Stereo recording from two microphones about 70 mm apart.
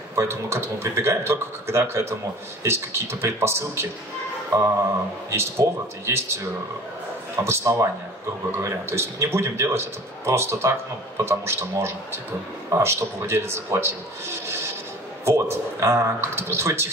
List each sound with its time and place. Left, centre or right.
0.1 s a man's voice: right
5.3 s a man's voice: right
7.4 s a man's voice: right